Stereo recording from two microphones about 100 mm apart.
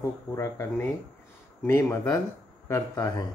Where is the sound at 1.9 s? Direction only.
35° left (ahead or behind).